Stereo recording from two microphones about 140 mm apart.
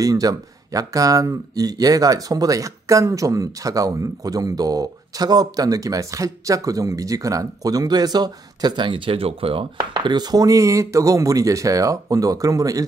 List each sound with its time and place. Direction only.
0.0 s speech: 25° right (ahead or behind)